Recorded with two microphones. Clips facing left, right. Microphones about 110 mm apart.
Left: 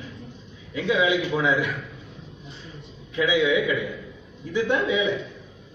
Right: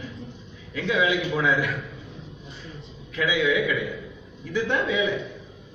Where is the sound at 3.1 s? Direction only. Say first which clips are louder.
Left 2 dB; 20° left (ahead or behind).